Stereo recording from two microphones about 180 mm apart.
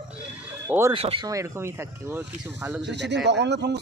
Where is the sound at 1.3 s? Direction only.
15° right (ahead or behind).